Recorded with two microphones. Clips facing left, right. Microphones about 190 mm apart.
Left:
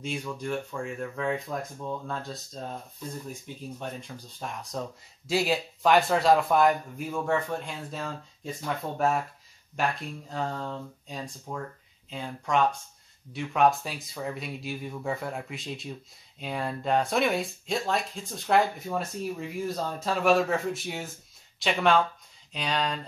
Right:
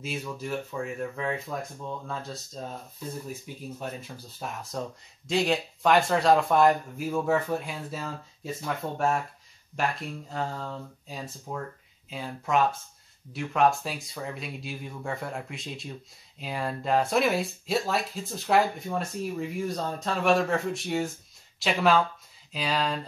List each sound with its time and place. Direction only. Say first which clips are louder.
0.0 s speech: left 1 dB; 5° right (ahead or behind)